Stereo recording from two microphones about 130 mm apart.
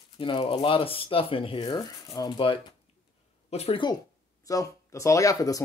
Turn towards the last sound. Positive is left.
turn(degrees=25)  # may be behind; listen again after turning